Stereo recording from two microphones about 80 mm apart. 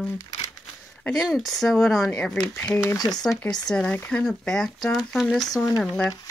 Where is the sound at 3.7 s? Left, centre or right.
Centre.